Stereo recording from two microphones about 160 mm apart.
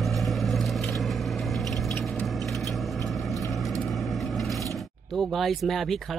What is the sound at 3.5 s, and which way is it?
Mechanisms, centre (ahead or behind).